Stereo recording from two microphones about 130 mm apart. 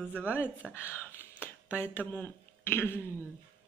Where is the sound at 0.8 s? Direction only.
15° left (ahead or behind).